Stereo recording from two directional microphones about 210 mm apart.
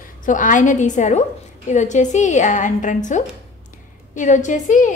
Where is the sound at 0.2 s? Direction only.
40° left (ahead or behind).